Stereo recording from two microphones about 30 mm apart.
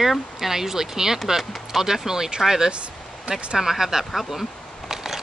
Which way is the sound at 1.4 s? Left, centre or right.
Centre.